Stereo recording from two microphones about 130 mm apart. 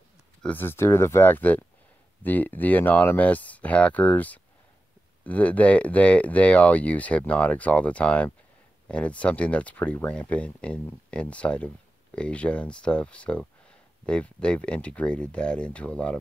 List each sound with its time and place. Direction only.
0.4 s speech: 15° left (ahead or behind)